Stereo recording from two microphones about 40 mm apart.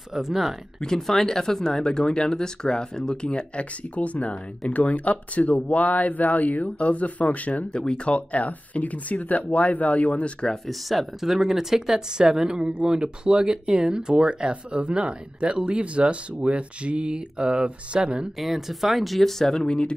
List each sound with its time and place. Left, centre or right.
0.1 s speech: centre
0.7 s speech: centre
3.3 s speech: left
7.7 s speech: left
10.5 s speech: centre; by 18.3 s right
18.4 s speech: centre